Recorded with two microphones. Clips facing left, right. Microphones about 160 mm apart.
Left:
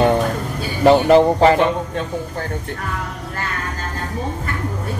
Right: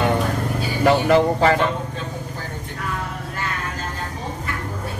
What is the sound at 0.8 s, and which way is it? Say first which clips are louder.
Speech: left 5 dB; 25° left (ahead or behind).